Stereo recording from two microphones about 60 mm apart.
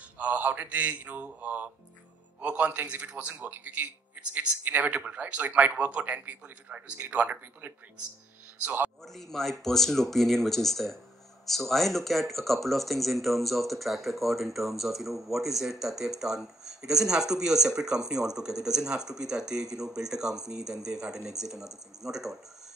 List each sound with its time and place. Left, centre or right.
0.2 s a man's voice: right
9.0 s speech: centre